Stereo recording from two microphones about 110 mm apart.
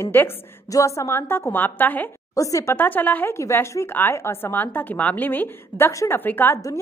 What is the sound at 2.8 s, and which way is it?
A woman's voice, 15° left (ahead or behind).